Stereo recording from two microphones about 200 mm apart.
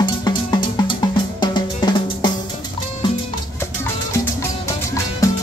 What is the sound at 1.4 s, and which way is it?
Drum, 20° left (ahead or behind).